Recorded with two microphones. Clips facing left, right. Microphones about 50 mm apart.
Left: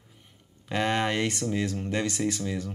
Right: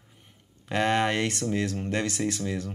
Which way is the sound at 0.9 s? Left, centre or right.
Centre.